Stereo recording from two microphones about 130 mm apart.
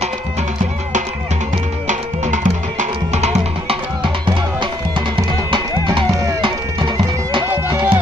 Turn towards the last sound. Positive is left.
turn(degrees=-35)  # may be behind; listen again after turning